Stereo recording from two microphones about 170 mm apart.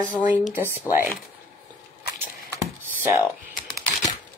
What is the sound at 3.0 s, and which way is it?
Speech, 10° right (ahead or behind).